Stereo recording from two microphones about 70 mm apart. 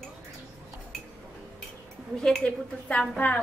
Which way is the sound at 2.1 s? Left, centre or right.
Centre.